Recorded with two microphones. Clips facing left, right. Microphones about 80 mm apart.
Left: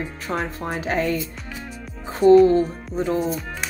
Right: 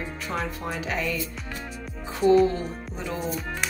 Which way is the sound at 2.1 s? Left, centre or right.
Left.